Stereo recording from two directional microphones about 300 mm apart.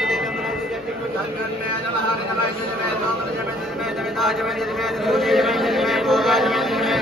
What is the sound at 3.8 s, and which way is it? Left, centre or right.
A man's voice, centre.